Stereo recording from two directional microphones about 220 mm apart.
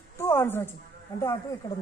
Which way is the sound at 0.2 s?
10° left (ahead or behind).